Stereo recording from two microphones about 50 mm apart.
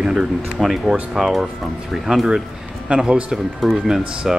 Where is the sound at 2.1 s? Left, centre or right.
Centre.